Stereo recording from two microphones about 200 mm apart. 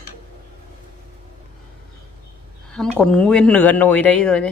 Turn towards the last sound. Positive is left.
turn(degrees=5)  # may be behind; listen again after turning